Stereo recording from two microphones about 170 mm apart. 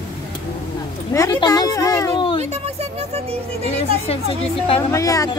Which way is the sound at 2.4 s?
40° right (ahead or behind).